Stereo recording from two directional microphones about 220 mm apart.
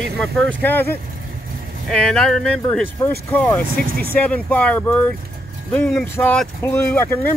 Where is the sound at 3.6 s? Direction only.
40° right (ahead or behind).